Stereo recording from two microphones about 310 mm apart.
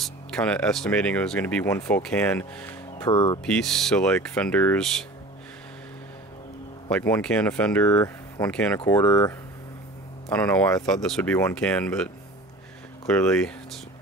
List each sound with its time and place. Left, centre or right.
0.0 s speech: centre
3.4 s speech: centre
6.9 s speech: centre
10.3 s speech: centre